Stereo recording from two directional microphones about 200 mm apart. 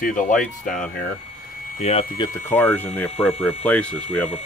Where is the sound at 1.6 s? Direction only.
40° left (ahead or behind).